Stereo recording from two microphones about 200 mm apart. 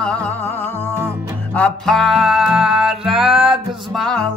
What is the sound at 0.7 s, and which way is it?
Speech, 10° right (ahead or behind).